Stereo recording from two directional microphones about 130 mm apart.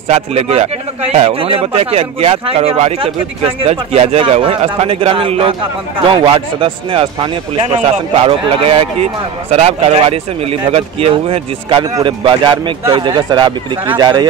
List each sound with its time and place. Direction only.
0.1 s speech: 50° right (ahead or behind)
7.6 s speech: 50° right (ahead or behind); by 14.2 s 35° right (ahead or behind)